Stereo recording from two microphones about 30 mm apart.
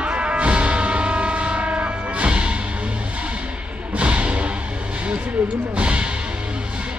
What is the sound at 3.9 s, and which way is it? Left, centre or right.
Music, right.